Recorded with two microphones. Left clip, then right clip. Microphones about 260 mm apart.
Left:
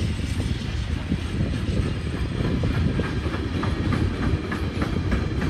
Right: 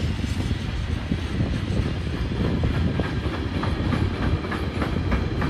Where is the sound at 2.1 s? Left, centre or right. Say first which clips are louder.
Right 1 dB; right.